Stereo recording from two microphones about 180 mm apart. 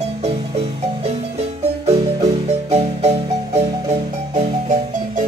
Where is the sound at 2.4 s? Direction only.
35° right (ahead or behind).